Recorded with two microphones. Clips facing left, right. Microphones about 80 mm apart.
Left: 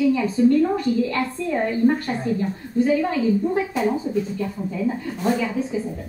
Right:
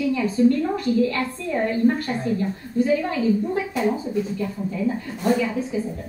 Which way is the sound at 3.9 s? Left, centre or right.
Centre.